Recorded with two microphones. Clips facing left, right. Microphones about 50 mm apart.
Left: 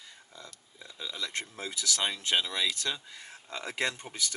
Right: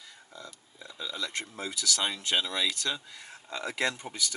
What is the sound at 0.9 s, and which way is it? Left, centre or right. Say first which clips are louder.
Speech: right 2 dB; centre.